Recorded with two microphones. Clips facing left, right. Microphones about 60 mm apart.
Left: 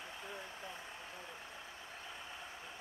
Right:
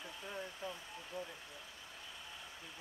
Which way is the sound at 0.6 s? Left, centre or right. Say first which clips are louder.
Right 3 dB; left.